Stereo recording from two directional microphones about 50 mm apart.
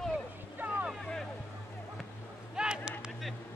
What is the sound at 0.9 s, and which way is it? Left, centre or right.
Vehicle, centre.